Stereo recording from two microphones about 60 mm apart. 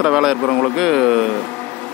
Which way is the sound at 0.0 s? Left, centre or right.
Centre.